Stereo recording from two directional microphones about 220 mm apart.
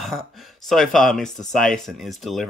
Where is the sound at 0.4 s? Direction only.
Centre (ahead or behind).